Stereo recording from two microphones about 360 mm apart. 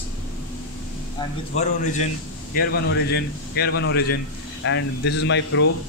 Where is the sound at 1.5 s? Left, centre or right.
Centre.